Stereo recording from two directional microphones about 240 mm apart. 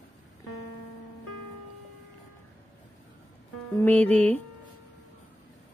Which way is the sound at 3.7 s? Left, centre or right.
Centre.